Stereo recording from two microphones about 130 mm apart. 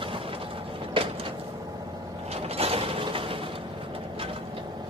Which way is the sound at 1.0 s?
40° right (ahead or behind).